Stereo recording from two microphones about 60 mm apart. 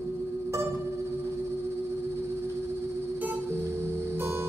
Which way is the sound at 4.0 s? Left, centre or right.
Right.